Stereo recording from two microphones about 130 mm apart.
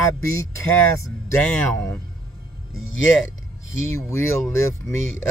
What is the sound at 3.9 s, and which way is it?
Music, 20° left (ahead or behind).